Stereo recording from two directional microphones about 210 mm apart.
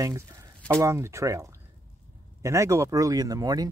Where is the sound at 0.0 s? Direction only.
15° right (ahead or behind).